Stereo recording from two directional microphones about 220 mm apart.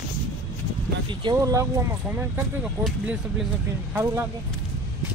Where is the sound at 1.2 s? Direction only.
15° right (ahead or behind).